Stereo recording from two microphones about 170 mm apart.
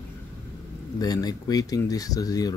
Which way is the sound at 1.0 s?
20° left (ahead or behind).